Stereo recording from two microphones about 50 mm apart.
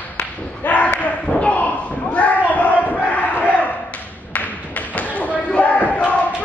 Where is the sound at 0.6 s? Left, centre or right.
Left.